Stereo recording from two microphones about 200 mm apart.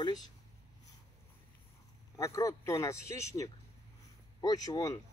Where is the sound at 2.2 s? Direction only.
15° left (ahead or behind).